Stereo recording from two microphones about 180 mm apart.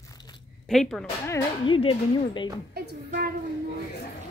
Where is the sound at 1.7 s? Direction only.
30° left (ahead or behind).